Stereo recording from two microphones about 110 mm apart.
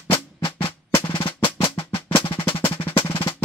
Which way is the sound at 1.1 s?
50° left (ahead or behind).